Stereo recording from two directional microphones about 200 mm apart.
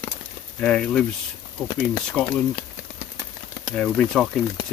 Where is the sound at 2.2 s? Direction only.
10° left (ahead or behind).